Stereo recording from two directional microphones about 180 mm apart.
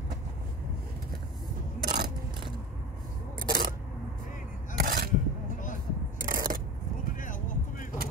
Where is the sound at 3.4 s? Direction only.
55° right (ahead or behind).